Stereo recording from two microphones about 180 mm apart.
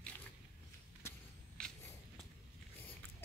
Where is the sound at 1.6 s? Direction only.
5° left (ahead or behind).